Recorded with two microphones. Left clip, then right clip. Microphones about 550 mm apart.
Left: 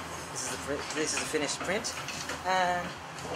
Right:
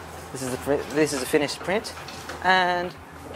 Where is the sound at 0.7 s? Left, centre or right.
Right.